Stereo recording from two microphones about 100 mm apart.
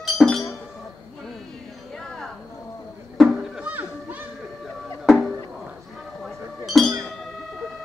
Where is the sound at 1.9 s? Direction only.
5° left (ahead or behind).